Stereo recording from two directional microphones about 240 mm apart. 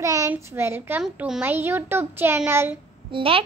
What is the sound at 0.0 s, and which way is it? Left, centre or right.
A child's voice, centre.